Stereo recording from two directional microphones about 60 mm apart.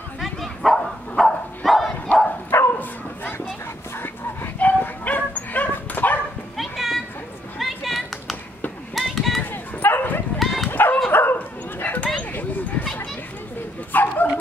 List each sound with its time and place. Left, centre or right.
0.2 s bow-wow: centre
2.5 s bow-wow: left
4.6 s dog: left
6.5 s children playing: centre
7.5 s a sound: centre
9.4 s bow-wow: left
10.4 s dog: centre
10.7 s dog: left
12.2 s a sound: left
13.9 s dog: left